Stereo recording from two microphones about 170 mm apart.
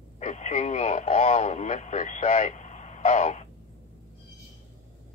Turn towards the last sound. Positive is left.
turn(degrees=40)  # may be behind; listen again after turning